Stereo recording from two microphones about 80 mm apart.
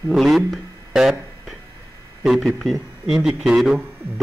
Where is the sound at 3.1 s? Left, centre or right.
Centre.